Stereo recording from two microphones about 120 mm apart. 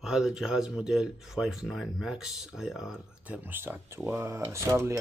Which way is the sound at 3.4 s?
15° right (ahead or behind).